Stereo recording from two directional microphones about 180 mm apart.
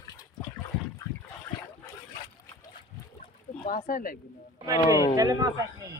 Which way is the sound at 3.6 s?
50° left (ahead or behind).